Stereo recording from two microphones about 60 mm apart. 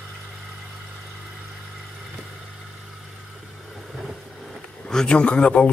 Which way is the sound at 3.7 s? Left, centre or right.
Centre.